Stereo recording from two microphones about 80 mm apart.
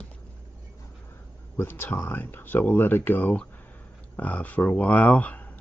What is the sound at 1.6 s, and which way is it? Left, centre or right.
Speech, left.